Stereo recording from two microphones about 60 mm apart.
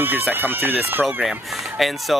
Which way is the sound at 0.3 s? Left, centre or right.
Right.